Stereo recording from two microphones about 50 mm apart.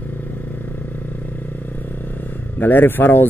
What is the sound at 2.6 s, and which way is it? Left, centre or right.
Speech, left.